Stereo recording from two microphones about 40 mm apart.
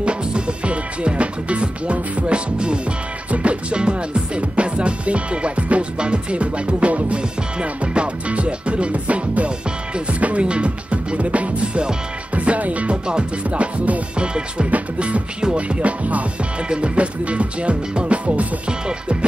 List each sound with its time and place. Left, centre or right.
0.0 s speech: right
3.3 s music: right
14.1 s music: right
16.6 s music: right
18.7 s music: right